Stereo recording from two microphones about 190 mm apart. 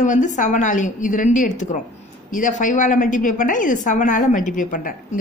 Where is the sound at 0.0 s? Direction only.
40° left (ahead or behind).